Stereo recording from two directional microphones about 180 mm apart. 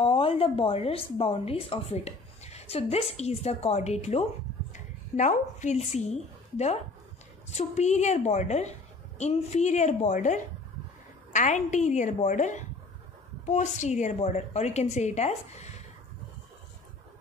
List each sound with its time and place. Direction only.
0.0 s a woman's voice: 30° left (ahead or behind)